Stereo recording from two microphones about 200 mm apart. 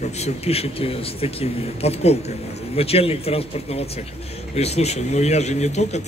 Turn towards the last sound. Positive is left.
turn(degrees=35)  # may be behind; listen again after turning